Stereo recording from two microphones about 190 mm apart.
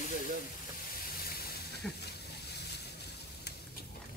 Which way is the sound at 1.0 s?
55° left (ahead or behind).